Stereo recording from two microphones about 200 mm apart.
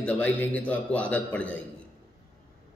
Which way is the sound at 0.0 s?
5° left (ahead or behind).